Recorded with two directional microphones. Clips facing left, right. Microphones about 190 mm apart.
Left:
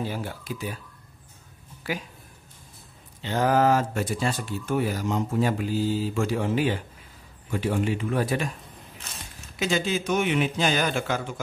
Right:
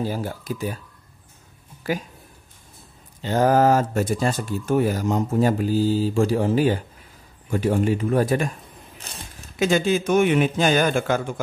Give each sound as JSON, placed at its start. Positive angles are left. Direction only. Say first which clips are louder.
{"t": 0.0, "sound": "speech", "louder": "right 5 dB", "side_deg": -40}
{"t": 1.8, "sound": "speech", "louder": "right 6 dB", "side_deg": -45}
{"t": 3.2, "sound": "speech", "louder": "right 4 dB", "side_deg": -40}
{"t": 9.6, "sound": "speech", "louder": "right 6 dB", "side_deg": -50}